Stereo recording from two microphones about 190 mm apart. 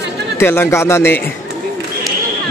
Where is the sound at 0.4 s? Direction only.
10° left (ahead or behind).